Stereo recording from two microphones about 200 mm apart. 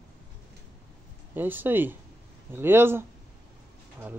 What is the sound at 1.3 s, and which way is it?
Speech, 10° right (ahead or behind).